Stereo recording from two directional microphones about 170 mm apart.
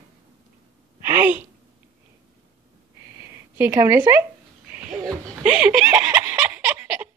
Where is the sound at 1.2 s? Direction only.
10° right (ahead or behind).